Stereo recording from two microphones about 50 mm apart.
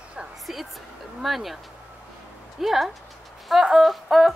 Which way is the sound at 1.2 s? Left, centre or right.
Centre.